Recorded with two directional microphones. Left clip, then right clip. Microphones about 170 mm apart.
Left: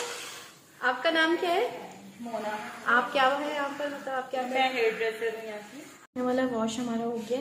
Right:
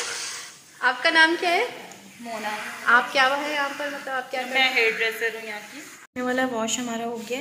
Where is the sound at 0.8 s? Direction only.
10° right (ahead or behind).